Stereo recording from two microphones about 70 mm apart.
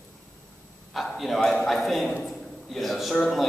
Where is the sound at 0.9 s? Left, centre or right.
Centre.